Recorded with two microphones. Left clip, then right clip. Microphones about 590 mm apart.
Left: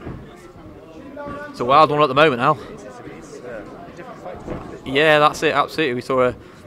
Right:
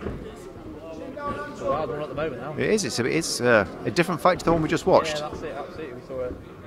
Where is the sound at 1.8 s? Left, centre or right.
Left.